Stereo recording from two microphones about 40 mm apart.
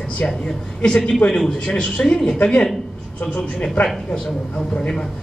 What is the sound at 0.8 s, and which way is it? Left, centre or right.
A man's voice, left.